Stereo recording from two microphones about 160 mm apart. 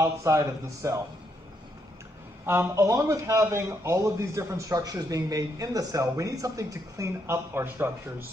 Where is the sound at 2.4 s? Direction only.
15° right (ahead or behind).